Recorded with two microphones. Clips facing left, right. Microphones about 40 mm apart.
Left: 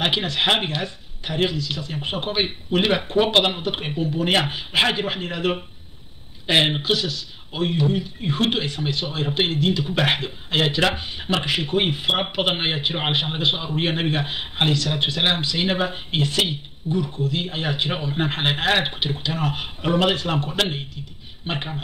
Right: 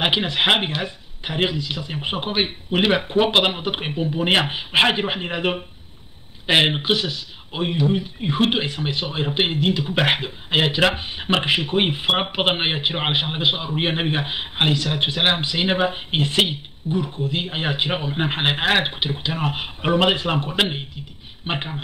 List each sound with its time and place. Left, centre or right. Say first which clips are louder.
0.0 s speech: right 2 dB; right
6.7 s a man's voice: right 1 dB; right